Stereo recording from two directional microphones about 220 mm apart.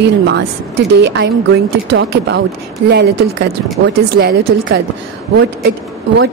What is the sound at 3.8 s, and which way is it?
A woman's voice, 45° right (ahead or behind).